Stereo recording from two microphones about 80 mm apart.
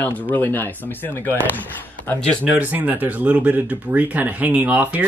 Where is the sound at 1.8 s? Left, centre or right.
Left.